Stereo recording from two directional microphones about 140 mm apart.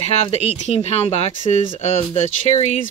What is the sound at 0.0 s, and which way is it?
Speech, 50° left (ahead or behind).